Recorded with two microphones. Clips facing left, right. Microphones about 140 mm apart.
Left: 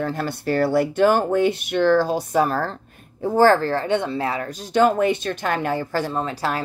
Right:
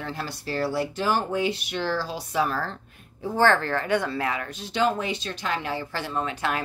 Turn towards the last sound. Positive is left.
turn(degrees=35)  # may be behind; listen again after turning